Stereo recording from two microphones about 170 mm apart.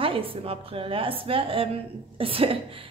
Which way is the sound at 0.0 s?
30° right (ahead or behind).